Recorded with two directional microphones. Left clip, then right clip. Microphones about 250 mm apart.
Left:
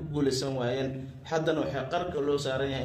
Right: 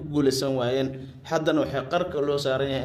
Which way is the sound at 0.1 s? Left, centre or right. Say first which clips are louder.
Right 6 dB; right.